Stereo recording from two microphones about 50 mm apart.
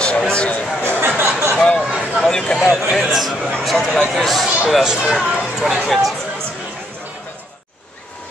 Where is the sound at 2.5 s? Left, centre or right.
Centre.